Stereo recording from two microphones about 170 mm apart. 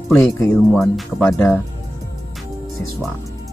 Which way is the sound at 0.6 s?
Centre (ahead or behind).